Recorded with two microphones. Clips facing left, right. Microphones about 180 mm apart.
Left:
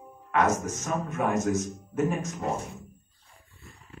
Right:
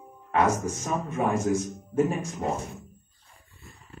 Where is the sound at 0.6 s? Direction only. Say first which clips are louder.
Right 1 dB; 30° right (ahead or behind).